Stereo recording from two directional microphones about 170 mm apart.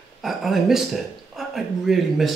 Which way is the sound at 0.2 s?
Centre (ahead or behind).